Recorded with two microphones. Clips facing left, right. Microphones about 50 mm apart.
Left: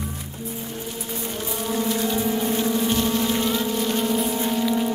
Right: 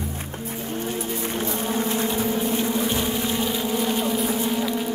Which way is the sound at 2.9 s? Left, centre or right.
Centre.